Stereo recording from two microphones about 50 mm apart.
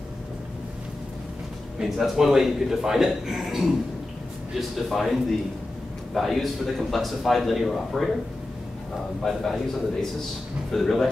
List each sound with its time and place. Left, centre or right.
1.8 s a man's voice: centre
9.2 s speech: centre
10.7 s speech: centre